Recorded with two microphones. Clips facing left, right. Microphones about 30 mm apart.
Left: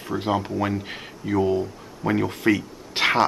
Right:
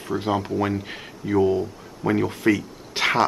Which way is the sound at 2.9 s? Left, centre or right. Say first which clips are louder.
Left 1 dB; centre.